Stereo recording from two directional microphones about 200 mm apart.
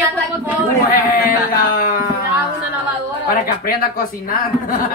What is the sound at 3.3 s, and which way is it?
Speech, 45° left (ahead or behind).